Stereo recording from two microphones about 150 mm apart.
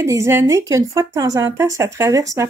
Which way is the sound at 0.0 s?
20° right (ahead or behind).